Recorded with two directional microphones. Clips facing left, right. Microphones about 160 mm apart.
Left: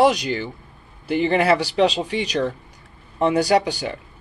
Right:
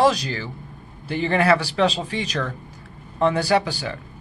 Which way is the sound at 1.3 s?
30° left (ahead or behind).